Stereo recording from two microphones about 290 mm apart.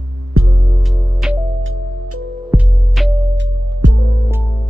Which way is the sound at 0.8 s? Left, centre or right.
Centre.